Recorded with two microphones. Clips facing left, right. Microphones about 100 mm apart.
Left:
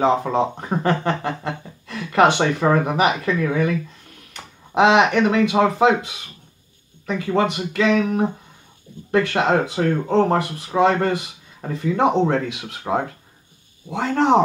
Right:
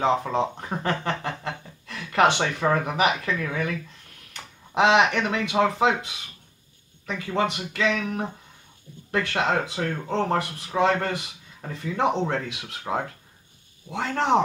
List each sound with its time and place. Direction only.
0.0 s speech: 15° left (ahead or behind)
4.7 s speech: 15° left (ahead or behind)
13.8 s speech: 10° left (ahead or behind)